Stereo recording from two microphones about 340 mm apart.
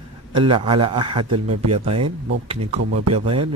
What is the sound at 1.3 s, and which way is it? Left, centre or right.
Speech, right.